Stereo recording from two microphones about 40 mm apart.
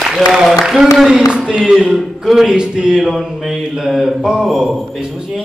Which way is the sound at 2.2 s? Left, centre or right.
Centre.